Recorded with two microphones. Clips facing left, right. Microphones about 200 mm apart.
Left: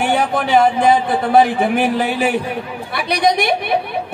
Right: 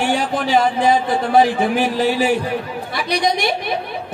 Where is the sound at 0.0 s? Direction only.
55° left (ahead or behind).